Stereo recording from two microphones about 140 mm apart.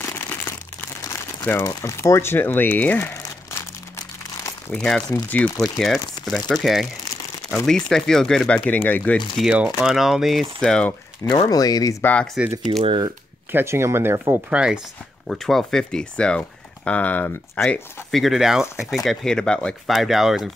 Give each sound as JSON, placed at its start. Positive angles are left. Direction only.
{"t": 0.0, "sound": "crumpling", "side_deg": 15}
{"t": 4.6, "sound": "speech", "side_deg": 5}
{"t": 9.4, "sound": "speech", "side_deg": -5}
{"t": 11.4, "sound": "speech", "side_deg": 25}
{"t": 12.0, "sound": "speech", "side_deg": 10}
{"t": 12.8, "sound": "speech", "side_deg": -35}
{"t": 13.5, "sound": "speech", "side_deg": -15}
{"t": 14.5, "sound": "speech", "side_deg": -5}
{"t": 18.1, "sound": "speech", "side_deg": 0}